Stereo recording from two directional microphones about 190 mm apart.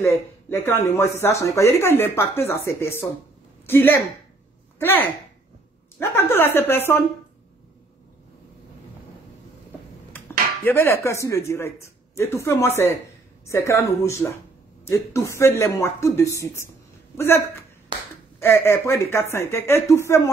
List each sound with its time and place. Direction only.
0.0 s speech: 15° left (ahead or behind)
10.6 s speech: 10° left (ahead or behind)
17.9 s finger snapping: 25° right (ahead or behind)
18.4 s speech: 15° left (ahead or behind)